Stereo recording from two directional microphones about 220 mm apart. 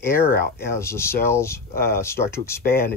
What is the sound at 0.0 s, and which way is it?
Speech, 10° left (ahead or behind).